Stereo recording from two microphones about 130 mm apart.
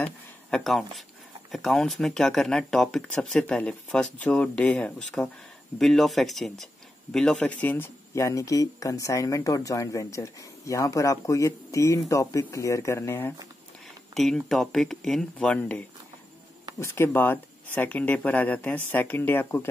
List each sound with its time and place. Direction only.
0.0 s a sound: 5° left (ahead or behind)
1.5 s speech: centre (ahead or behind); by 13.3 s 20° left (ahead or behind)
14.1 s speech: centre (ahead or behind)
16.8 s speech: 20° left (ahead or behind)